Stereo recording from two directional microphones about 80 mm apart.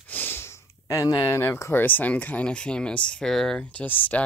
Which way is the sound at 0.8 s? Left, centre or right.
Left.